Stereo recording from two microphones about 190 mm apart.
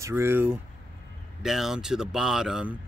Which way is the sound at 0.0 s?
10° right (ahead or behind).